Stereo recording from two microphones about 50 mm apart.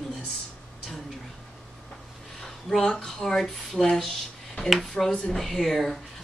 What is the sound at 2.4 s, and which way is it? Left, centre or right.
Speech, centre.